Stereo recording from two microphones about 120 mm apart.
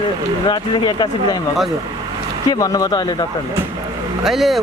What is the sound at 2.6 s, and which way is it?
Speech, 30° left (ahead or behind).